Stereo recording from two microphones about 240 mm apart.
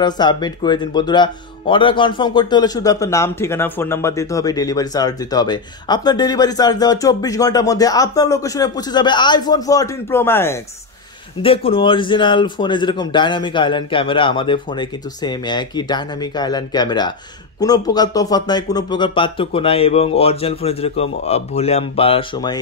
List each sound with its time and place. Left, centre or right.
0.0 s speech: centre
11.4 s speech: left